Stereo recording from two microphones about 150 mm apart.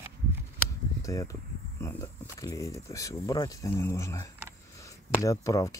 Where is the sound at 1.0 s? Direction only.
20° left (ahead or behind).